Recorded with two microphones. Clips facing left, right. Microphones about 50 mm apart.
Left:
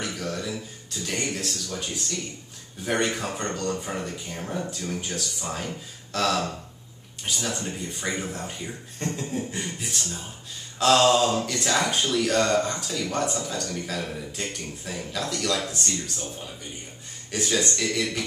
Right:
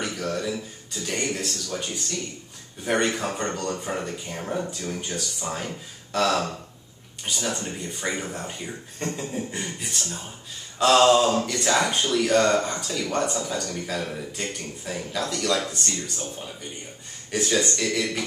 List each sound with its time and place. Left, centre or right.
0.0 s a sound: centre
1.7 s speech: centre
2.8 s speech: centre